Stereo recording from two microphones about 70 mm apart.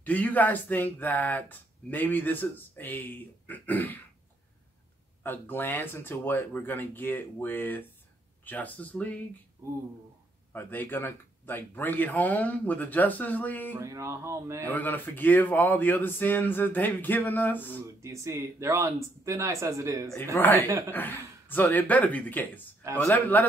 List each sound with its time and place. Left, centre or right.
0.0 s speech: left
5.2 s speech: left
10.5 s speech: left
13.7 s speech: right
14.6 s speech: left
17.8 s speech: right
20.3 s speech: left